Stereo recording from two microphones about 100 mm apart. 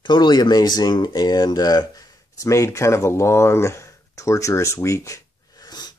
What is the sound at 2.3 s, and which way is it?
Speech, 30° left (ahead or behind).